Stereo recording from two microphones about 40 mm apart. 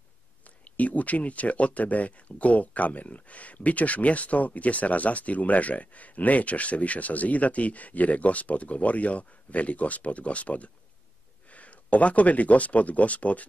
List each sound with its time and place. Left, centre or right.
0.4 s speech: left